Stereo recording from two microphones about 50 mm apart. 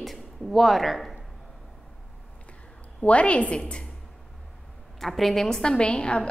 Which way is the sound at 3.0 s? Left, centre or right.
Left.